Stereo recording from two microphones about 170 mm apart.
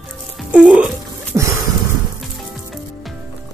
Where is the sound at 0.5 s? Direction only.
5° right (ahead or behind).